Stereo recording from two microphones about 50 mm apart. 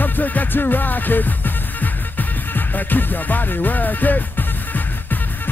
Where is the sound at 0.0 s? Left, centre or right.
Left.